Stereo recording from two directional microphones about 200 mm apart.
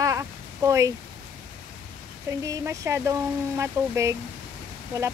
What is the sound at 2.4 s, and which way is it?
Speech, 15° right (ahead or behind).